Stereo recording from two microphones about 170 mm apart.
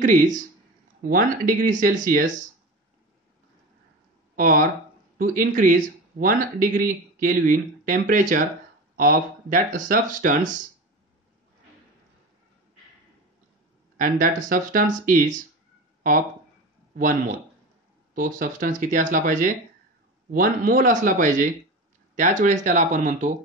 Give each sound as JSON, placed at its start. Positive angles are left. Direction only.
{"t": 0.0, "sound": "speech", "side_deg": -50}
{"t": 4.4, "sound": "speech", "side_deg": -55}
{"t": 13.9, "sound": "speech", "side_deg": -50}